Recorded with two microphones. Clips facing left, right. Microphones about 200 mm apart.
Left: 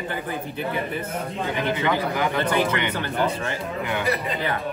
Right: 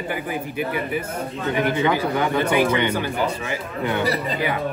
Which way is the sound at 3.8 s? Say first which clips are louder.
Right 3 dB; 35° right (ahead or behind).